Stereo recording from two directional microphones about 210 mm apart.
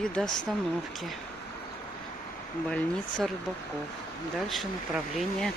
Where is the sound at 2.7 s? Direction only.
5° left (ahead or behind).